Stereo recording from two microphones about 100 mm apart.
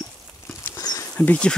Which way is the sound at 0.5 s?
30° left (ahead or behind).